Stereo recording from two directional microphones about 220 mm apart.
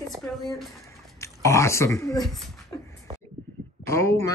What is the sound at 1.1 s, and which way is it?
Speech, 15° left (ahead or behind).